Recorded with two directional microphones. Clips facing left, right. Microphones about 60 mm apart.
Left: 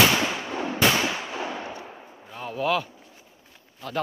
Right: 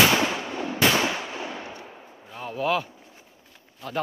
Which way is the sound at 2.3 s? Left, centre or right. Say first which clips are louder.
Even; centre.